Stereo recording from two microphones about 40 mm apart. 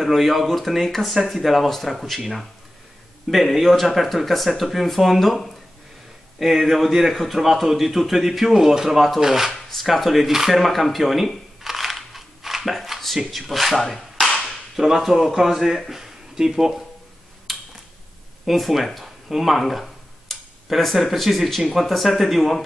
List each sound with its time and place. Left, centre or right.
0.0 s a man's voice: centre
9.5 s speech: centre
13.8 s a sound: centre
14.8 s a man's voice: centre
17.5 s tick-tock: centre
18.4 s speech: centre